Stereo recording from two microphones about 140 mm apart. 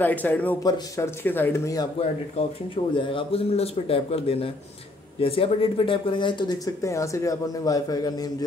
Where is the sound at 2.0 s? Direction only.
40° left (ahead or behind).